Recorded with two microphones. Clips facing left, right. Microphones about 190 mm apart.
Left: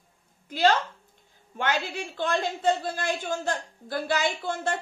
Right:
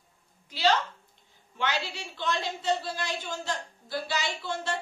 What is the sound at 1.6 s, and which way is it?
A woman's voice, 50° left (ahead or behind).